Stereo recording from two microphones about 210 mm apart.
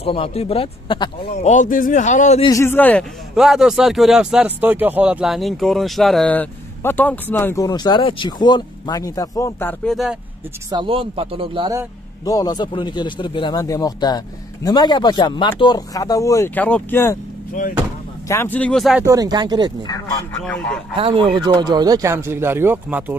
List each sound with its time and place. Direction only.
0.0 s speech: 25° left (ahead or behind)
1.4 s speech: 35° left (ahead or behind)
2.4 s a man's voice: 15° left (ahead or behind)
10.7 s speech: 25° right (ahead or behind)
12.3 s a man's voice: 20° left (ahead or behind)
18.3 s speech: 10° left (ahead or behind)
19.0 s speech: 20° right (ahead or behind)
20.3 s speech: 5° left (ahead or behind)
20.9 s speech: 25° right (ahead or behind); by 23.1 s 10° right (ahead or behind)